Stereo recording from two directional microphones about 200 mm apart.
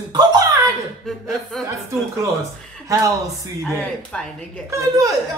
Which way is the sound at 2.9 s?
15° right (ahead or behind).